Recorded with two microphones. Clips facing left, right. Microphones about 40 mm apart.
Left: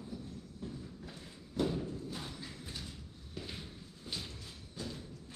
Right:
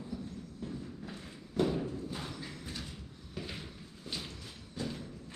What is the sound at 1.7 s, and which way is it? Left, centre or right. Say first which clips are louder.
Clip-clop: right 3 dB; right.